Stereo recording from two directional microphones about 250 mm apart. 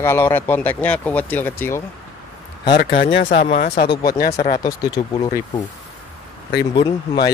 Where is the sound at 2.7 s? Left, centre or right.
Left.